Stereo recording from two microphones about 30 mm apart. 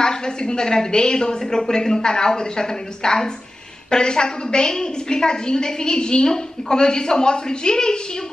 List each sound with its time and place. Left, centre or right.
0.0 s a woman's voice: left